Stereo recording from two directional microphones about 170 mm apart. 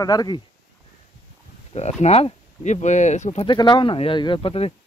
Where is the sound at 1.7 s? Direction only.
40° left (ahead or behind).